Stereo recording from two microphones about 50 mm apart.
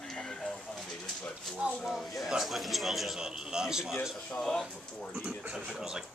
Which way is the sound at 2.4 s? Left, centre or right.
Centre.